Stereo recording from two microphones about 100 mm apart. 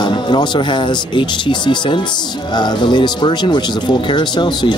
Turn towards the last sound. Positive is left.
turn(degrees=50)  # may be behind; listen again after turning